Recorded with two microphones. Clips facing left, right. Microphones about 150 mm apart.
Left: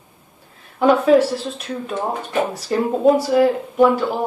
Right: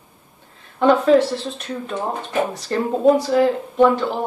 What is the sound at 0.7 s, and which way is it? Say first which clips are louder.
Speech: left 1 dB; 5° left (ahead or behind).